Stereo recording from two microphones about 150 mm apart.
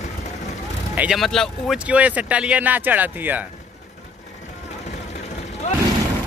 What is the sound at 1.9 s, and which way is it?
Speech, 10° right (ahead or behind).